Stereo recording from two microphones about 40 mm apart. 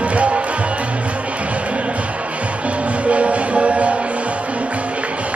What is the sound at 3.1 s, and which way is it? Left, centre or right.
Music, right.